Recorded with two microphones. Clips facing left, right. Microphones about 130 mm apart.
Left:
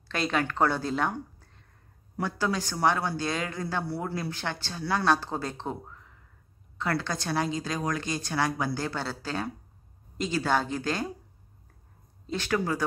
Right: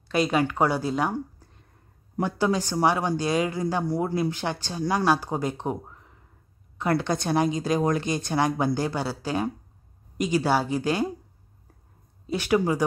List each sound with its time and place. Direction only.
0.1 s speech: 10° right (ahead or behind)
12.3 s speech: 15° right (ahead or behind)